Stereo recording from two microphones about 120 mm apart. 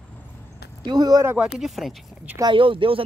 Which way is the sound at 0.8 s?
35° right (ahead or behind).